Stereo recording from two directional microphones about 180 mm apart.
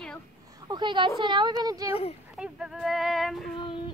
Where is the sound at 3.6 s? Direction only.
25° left (ahead or behind).